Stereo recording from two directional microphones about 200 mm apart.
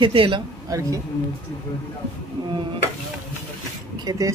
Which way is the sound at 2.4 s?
25° right (ahead or behind).